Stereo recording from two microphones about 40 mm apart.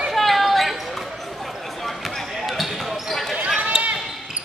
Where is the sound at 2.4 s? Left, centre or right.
Centre.